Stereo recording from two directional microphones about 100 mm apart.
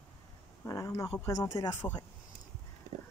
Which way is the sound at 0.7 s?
35° left (ahead or behind).